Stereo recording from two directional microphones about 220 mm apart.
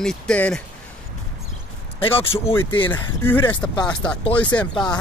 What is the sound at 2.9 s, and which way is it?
Speech, 10° left (ahead or behind).